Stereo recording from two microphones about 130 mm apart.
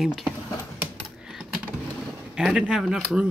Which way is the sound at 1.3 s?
5° right (ahead or behind).